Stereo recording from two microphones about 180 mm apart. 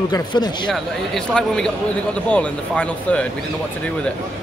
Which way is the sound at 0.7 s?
5° left (ahead or behind).